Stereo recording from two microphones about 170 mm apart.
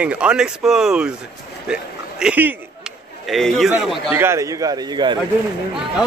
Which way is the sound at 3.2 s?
Centre (ahead or behind).